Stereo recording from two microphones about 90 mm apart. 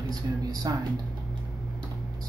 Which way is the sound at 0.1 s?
45° right (ahead or behind).